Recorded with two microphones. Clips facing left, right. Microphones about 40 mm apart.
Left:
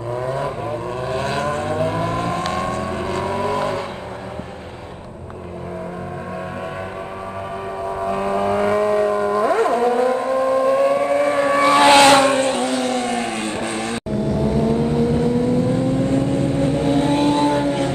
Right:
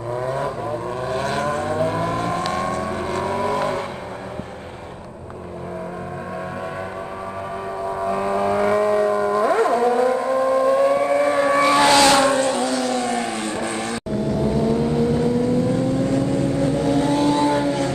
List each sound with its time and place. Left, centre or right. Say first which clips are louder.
0.3 s vehicle: left 1 dB; left
8.1 s vehicle: left 1 dB; left
8.8 s vehicle: left 1 dB; left
9.6 s music: left 1 dB; left
10.1 s civil defense siren: left 1 dB; left
11.5 s a sound: left 4 dB; left